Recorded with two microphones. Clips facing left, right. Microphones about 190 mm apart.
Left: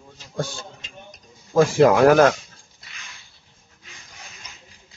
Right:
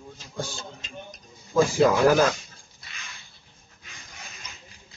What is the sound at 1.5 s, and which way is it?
Speech, 70° left (ahead or behind).